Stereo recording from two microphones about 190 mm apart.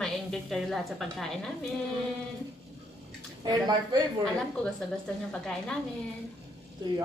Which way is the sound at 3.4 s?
20° right (ahead or behind).